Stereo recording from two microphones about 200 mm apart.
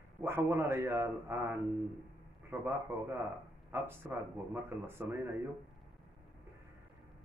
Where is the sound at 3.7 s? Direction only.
10° right (ahead or behind).